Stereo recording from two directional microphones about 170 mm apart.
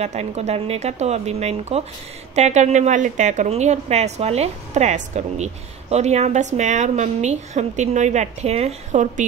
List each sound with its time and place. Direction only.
0.0 s a woman's voice: 40° right (ahead or behind)